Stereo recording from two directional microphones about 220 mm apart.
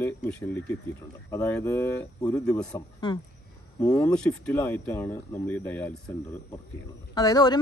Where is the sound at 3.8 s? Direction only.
15° left (ahead or behind).